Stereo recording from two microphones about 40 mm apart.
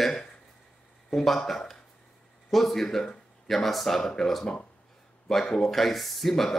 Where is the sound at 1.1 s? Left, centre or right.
Centre.